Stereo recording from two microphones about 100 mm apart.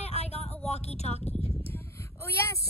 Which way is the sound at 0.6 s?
90° left.